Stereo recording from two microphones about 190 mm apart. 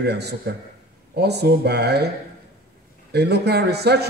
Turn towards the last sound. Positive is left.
turn(degrees=-60)  # may be behind; listen again after turning